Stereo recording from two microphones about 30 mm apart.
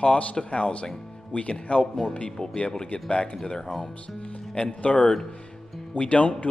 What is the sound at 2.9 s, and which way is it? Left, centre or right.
Speech, left.